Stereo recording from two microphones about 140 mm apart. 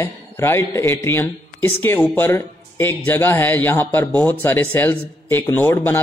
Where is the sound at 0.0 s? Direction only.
20° left (ahead or behind).